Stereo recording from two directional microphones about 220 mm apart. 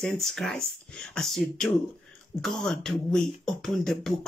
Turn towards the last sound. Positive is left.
turn(degrees=0)  # may be behind; listen again after turning